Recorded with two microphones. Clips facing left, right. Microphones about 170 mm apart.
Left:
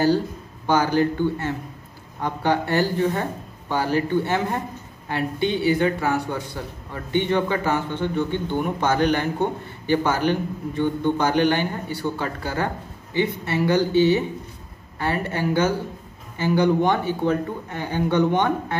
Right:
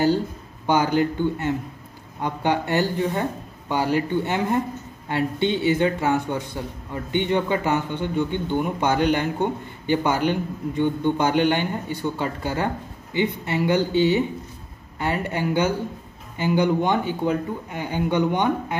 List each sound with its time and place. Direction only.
0.7 s a man's voice: 20° right (ahead or behind)